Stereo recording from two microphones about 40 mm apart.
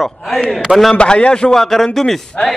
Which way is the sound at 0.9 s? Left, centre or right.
Left.